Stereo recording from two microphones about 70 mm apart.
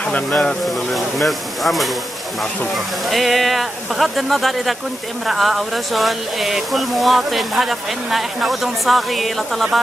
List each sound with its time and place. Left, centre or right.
0.3 s speech: centre
0.9 s speech: centre